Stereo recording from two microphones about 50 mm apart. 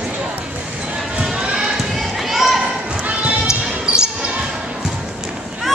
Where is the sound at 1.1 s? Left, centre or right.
Centre.